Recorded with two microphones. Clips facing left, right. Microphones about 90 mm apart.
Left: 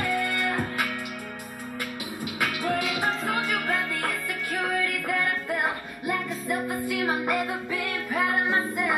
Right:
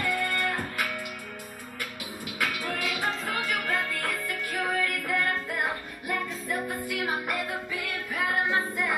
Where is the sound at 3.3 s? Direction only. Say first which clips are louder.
Left 2 dB; 20° left (ahead or behind).